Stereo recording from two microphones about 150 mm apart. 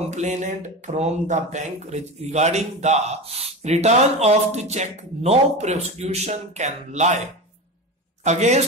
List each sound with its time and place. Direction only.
0.1 s speech: 50° right (ahead or behind)
8.2 s a woman's voice: 50° right (ahead or behind)